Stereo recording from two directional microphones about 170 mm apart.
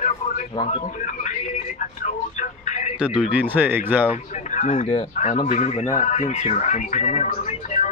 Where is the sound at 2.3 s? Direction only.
45° left (ahead or behind).